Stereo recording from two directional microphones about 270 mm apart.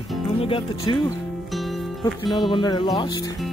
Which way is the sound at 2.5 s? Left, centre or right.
Centre.